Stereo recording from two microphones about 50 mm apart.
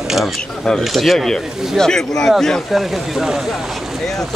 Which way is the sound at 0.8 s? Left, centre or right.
Centre.